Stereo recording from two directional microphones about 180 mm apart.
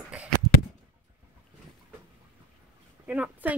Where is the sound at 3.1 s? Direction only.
10° right (ahead or behind).